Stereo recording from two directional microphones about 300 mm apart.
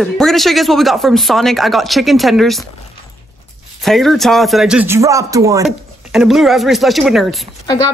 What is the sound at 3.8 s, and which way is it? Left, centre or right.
Speech, centre.